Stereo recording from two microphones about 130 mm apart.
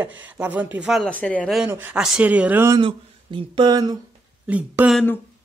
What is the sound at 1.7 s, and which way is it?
Speech, 15° right (ahead or behind).